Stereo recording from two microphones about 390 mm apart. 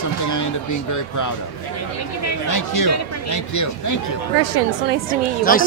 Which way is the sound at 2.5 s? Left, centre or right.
Left.